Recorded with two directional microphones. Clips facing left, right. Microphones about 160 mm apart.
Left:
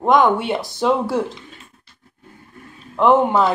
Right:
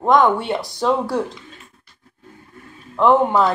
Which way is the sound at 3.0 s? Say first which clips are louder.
Even; centre (ahead or behind).